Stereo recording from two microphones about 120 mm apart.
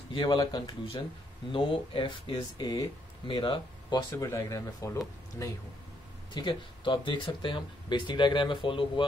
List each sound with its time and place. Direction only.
0.1 s speech: 40° left (ahead or behind)
4.1 s speech: 25° left (ahead or behind)
6.3 s speech: 40° left (ahead or behind)